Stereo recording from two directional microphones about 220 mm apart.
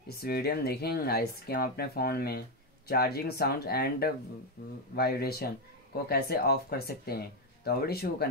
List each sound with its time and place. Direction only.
0.1 s speech: 45° left (ahead or behind)